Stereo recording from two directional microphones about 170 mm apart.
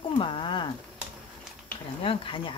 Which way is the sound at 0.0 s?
30° left (ahead or behind).